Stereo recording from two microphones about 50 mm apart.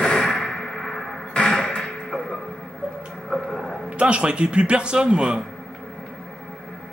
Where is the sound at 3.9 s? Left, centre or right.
Right.